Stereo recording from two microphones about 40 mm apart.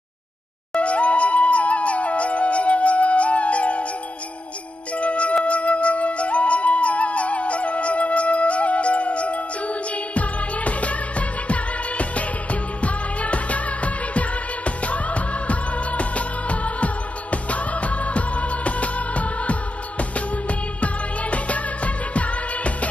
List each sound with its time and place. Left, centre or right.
0.7 s music: left
4.9 s music: left
5.4 s flute: left